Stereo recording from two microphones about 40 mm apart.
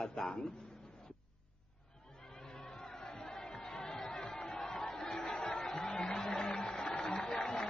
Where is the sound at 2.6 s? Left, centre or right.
Centre.